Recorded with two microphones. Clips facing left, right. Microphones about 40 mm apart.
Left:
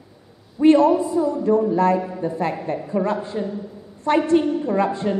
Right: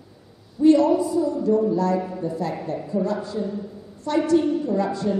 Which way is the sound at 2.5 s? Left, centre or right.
Left.